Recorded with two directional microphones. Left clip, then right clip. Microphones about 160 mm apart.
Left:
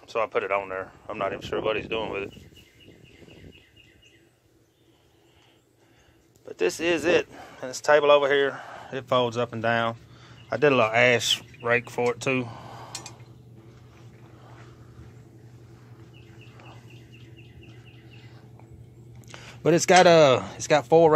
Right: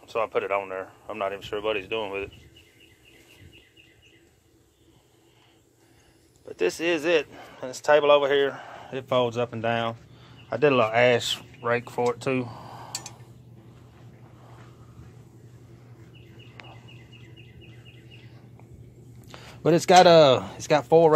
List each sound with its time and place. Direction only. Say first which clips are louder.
0.0 s speech: even; centre (ahead or behind)
6.4 s speech: even; 5° left (ahead or behind)
19.2 s speech: even; 5° right (ahead or behind)